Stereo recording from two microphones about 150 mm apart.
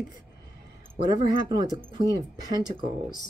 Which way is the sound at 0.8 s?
35° right (ahead or behind).